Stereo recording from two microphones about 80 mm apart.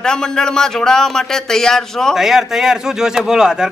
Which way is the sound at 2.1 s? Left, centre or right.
Centre.